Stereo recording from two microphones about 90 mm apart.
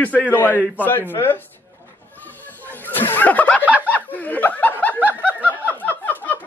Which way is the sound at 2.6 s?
20° left (ahead or behind).